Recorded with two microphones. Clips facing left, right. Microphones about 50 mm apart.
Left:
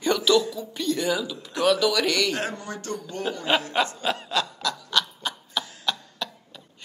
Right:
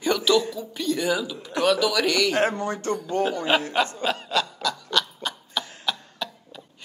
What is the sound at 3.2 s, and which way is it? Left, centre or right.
Speech, centre.